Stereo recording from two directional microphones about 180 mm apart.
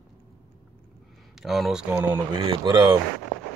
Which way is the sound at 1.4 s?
Centre (ahead or behind).